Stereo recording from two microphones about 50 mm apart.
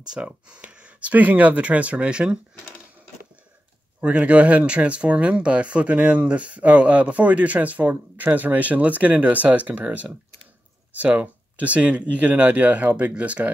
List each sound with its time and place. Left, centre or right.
0.1 s speech: right
4.0 s speech: right